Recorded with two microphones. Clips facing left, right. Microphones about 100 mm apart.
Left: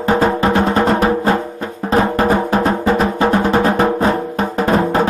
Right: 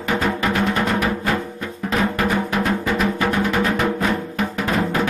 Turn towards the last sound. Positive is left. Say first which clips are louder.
# left 6 dB
turn(degrees=35)  # may be behind; listen again after turning